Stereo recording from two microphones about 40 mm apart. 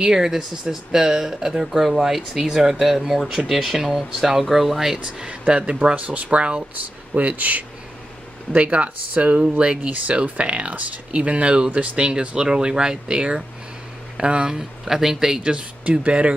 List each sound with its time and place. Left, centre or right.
0.0 s speech: centre
5.0 s speech: right
5.9 s speech: right
14.5 s speech: centre
15.5 s speech: right